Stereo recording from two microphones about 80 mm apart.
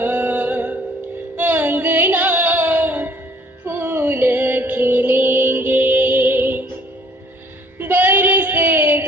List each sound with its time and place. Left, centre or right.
0.0 s music: right
7.8 s child singing: right